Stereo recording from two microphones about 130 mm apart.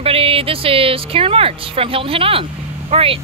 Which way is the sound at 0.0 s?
45° right (ahead or behind).